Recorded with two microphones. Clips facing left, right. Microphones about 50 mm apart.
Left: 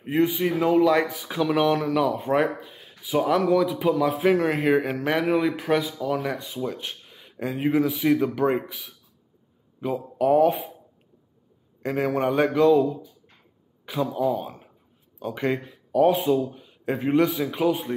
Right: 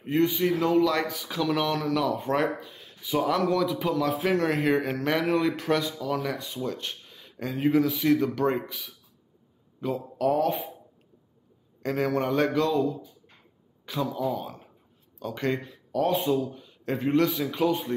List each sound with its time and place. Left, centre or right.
0.0 s speech: centre
11.8 s speech: centre
13.8 s speech: centre
16.4 s a man's voice: centre